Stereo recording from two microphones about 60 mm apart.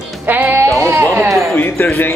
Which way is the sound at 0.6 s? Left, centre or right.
Right.